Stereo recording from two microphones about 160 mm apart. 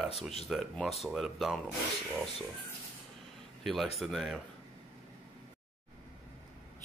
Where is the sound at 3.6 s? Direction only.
Centre (ahead or behind).